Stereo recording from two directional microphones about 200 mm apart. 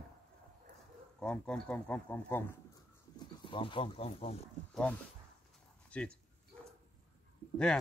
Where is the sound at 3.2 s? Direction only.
25° left (ahead or behind).